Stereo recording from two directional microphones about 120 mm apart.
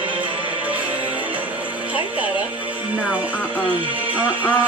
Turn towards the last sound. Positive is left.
turn(degrees=-10)  # may be behind; listen again after turning